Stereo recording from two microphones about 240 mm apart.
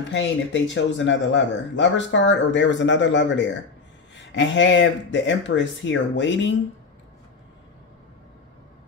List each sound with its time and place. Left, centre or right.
0.1 s speech: left